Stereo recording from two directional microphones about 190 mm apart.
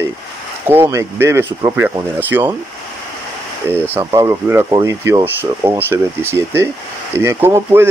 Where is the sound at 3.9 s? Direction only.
15° right (ahead or behind).